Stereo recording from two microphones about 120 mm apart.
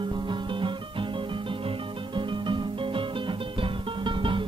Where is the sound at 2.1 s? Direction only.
40° right (ahead or behind).